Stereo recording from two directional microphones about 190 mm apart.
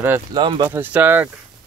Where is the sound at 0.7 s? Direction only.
10° right (ahead or behind).